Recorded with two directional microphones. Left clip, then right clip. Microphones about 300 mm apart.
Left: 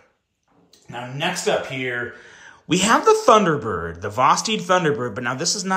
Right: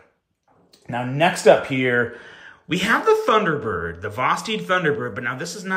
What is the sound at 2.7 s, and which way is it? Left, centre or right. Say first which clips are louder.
Speech: left 2 dB; centre.